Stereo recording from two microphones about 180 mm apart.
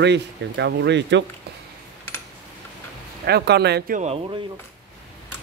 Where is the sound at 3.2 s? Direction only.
65° right (ahead or behind).